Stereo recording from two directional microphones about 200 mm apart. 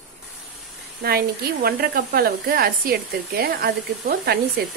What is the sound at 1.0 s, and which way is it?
A woman's voice, 50° right (ahead or behind).